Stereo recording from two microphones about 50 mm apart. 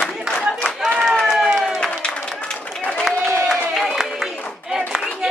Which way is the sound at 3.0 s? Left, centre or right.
Centre.